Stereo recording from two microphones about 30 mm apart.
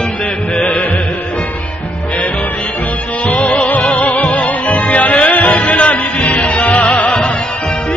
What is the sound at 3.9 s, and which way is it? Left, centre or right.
Music, left.